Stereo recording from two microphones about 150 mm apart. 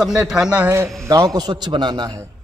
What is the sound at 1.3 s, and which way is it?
Speech, 30° right (ahead or behind).